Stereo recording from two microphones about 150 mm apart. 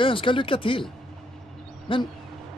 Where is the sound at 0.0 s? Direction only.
35° left (ahead or behind).